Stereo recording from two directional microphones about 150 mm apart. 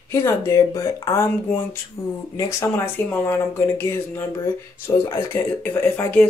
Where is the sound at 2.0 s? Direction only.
40° left (ahead or behind).